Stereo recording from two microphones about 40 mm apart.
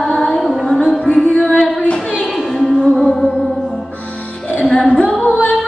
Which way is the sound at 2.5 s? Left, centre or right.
Centre.